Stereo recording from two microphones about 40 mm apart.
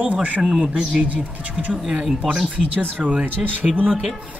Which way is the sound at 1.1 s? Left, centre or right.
Right.